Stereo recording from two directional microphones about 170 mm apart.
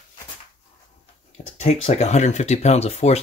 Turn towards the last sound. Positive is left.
turn(degrees=40)  # may be behind; listen again after turning